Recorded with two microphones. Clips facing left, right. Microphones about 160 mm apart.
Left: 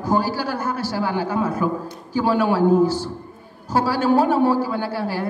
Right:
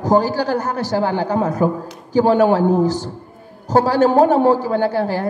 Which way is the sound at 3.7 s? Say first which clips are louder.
Right 4 dB; 40° right (ahead or behind).